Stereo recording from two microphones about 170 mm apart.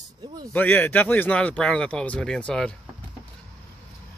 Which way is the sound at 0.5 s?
10° left (ahead or behind).